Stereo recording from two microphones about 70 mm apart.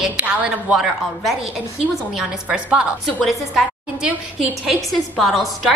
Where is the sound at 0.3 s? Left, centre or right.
Centre.